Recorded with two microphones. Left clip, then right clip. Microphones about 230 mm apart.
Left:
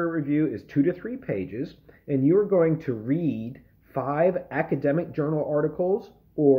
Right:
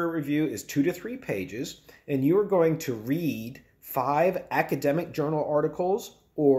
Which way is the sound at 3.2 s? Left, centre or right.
Right.